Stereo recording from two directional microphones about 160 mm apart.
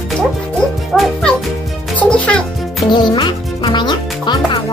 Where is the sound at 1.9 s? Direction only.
10° left (ahead or behind).